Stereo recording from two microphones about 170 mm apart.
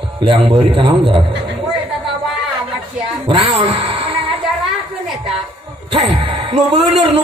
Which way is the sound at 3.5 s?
35° right (ahead or behind).